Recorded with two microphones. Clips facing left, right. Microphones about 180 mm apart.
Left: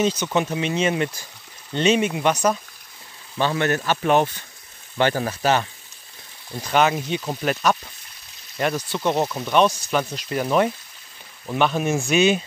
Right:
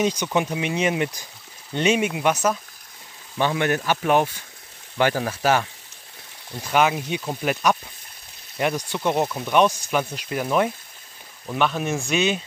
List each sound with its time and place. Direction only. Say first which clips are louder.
0.0 s speech: left 1 dB; 10° right (ahead or behind)
5.4 s speech: even; 10° right (ahead or behind)
9.2 s speech: even; centre (ahead or behind)
9.5 s speech: left 1 dB; 10° right (ahead or behind)